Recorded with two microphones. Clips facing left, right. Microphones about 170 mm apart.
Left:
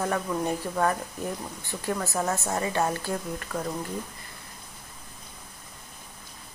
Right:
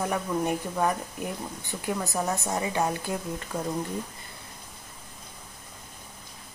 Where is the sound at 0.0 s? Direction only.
10° right (ahead or behind).